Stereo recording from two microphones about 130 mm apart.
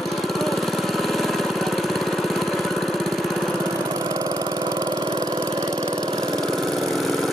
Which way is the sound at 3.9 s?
25° right (ahead or behind).